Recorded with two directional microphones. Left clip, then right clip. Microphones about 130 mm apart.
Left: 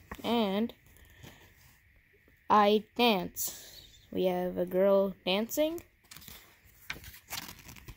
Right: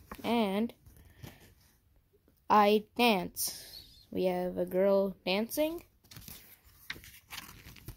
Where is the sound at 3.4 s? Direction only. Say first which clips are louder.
Right 2 dB; centre (ahead or behind).